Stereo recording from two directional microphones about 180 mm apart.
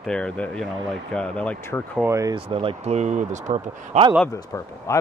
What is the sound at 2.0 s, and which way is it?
Speech, 15° right (ahead or behind).